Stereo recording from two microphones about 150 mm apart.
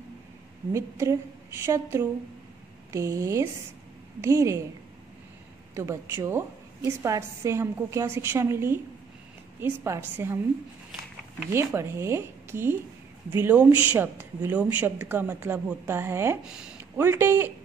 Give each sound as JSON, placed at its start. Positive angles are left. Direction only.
{"t": 0.7, "sound": "a woman's voice", "side_deg": -20}
{"t": 6.2, "sound": "a woman's voice", "side_deg": -15}
{"t": 11.5, "sound": "a woman's voice", "side_deg": -15}
{"t": 16.4, "sound": "speech", "side_deg": -5}
{"t": 17.0, "sound": "a woman's voice", "side_deg": -15}